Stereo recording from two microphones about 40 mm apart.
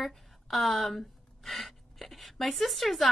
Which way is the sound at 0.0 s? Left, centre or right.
Centre.